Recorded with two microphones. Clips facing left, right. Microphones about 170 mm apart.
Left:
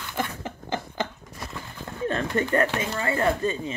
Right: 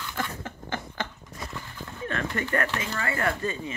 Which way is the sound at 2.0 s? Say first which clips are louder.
Left 5 dB; 30° left (ahead or behind).